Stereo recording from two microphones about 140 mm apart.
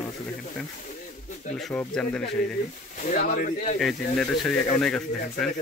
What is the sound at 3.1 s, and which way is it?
Speech, 90° left.